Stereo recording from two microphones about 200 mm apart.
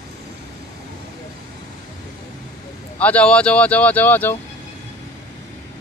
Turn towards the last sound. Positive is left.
turn(degrees=10)  # may be behind; listen again after turning